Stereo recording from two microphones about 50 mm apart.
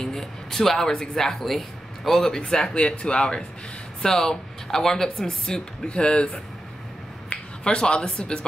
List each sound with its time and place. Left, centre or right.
0.0 s speech: centre
5.9 s speech: left